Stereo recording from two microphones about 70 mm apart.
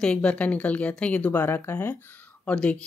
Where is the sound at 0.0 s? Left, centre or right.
Centre; by 2.0 s left.